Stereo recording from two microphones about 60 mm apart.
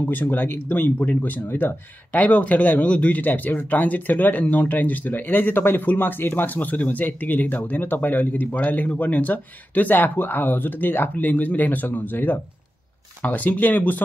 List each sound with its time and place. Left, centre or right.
0.0 s speech: left